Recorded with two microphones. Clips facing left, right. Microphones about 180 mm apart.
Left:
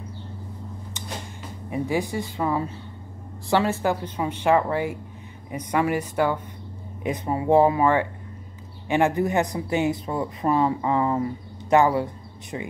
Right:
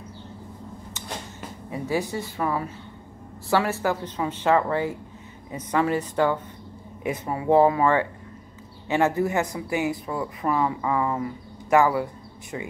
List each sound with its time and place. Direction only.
1.7 s speech: 15° left (ahead or behind)
7.0 s speech: 25° left (ahead or behind)